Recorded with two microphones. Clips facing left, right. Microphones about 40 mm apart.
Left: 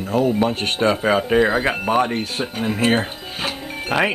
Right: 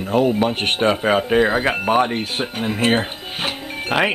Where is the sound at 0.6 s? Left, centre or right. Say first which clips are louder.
Right 1 dB; right.